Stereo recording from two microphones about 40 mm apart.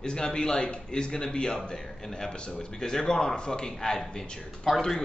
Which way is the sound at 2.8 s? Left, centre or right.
Centre.